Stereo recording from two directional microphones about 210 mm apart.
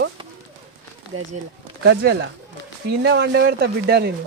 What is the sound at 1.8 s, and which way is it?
Speech, 55° right (ahead or behind).